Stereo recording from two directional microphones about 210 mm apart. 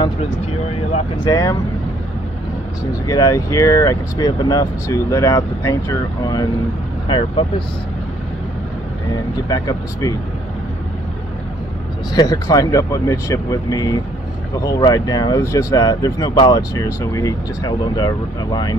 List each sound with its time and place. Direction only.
0.0 s speech: 25° left (ahead or behind)
1.3 s speech: 15° left (ahead or behind)
2.8 s speech: 15° left (ahead or behind)
9.5 s speech: 15° left (ahead or behind)
12.1 s speech: 20° left (ahead or behind)